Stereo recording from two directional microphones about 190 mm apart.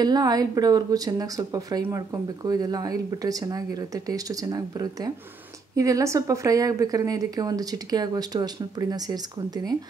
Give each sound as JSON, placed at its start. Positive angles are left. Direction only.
{"t": 0.0, "sound": "a woman's voice", "side_deg": -20}